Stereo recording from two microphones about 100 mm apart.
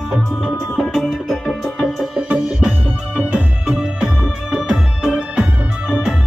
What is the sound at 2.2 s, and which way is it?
Music, 10° right (ahead or behind).